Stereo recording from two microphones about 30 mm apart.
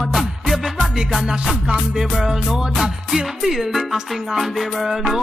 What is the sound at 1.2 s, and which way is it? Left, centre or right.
Music, right.